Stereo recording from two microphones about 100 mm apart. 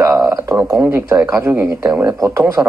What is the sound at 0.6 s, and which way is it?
A man's voice, 15° right (ahead or behind).